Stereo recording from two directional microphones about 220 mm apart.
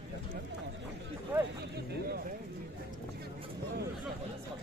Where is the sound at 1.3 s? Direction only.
10° right (ahead or behind).